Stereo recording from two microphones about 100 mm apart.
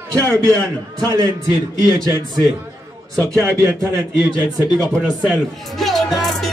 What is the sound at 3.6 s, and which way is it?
A man's voice, 20° right (ahead or behind).